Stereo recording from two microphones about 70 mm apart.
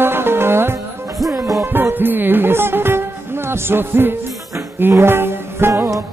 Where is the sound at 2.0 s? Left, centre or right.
Right.